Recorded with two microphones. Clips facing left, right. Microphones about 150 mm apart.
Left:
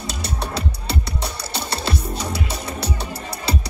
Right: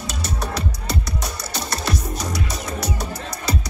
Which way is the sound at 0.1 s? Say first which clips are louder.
Even; 30° left (ahead or behind).